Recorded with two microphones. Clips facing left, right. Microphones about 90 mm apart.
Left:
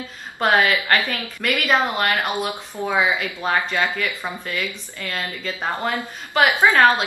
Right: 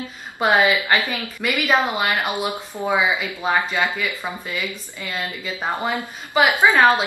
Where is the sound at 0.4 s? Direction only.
5° right (ahead or behind).